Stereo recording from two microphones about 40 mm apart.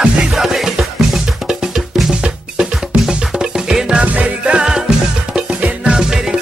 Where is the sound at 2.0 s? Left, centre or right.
Right.